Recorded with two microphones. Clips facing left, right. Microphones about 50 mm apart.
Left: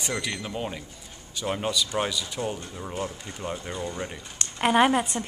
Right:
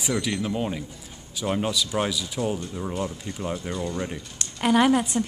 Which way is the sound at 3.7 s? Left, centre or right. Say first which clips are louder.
Right 3 dB; centre.